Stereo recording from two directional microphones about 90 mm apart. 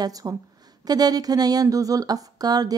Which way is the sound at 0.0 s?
45° right (ahead or behind).